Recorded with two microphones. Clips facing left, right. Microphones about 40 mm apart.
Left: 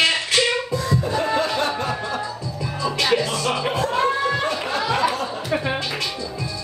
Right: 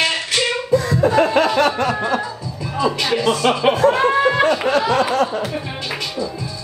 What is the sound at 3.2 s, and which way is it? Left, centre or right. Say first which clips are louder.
Music: right 6 dB; right.